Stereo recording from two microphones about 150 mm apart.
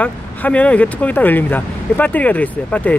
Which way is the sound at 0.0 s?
10° left (ahead or behind).